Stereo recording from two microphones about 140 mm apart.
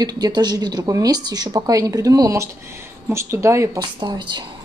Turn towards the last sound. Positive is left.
turn(degrees=-30)  # may be behind; listen again after turning